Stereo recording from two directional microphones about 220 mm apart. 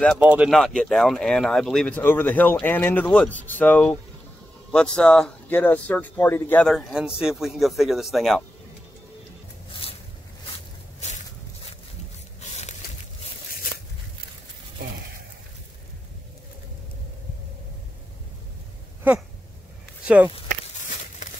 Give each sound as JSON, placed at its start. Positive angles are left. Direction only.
{"t": 0.2, "sound": "speech", "side_deg": -5}
{"t": 9.7, "sound": "a sound", "side_deg": 25}
{"t": 11.0, "sound": "walk", "side_deg": 30}
{"t": 12.4, "sound": "tearing", "side_deg": 30}